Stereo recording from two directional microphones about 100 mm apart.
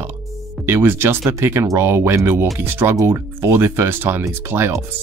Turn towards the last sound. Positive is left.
turn(degrees=-25)  # may be behind; listen again after turning